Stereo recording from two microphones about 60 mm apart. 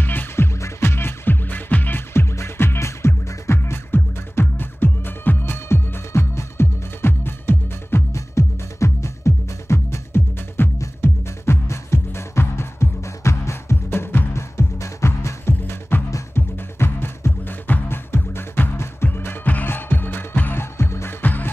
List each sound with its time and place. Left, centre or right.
0.0 s music: left
0.6 s music: left
8.1 s music: left
19.0 s music: left
20.7 s music: left
21.2 s music: left